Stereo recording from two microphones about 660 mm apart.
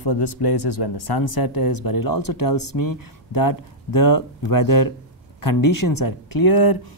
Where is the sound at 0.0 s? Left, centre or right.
Left.